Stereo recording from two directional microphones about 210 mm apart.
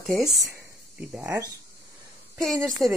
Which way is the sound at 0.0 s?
Centre (ahead or behind).